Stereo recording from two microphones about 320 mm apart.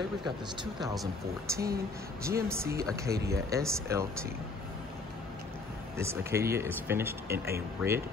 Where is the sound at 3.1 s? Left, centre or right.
Right.